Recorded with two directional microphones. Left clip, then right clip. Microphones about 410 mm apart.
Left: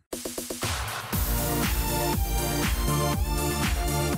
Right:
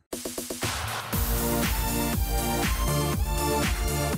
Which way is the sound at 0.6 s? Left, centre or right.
Centre.